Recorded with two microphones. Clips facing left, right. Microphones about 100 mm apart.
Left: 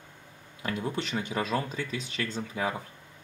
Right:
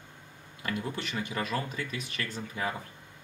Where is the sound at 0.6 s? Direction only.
20° left (ahead or behind).